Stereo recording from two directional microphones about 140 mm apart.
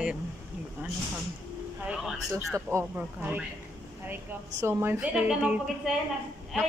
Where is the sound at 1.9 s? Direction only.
Centre (ahead or behind).